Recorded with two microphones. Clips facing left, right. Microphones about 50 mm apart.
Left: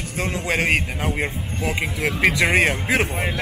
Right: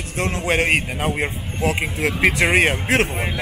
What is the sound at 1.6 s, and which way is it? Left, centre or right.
Speech, centre.